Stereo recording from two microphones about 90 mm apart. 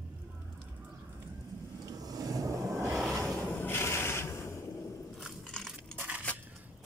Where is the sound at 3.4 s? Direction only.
25° left (ahead or behind).